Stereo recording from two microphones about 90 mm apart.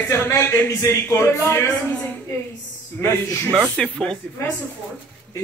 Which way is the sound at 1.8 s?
10° left (ahead or behind).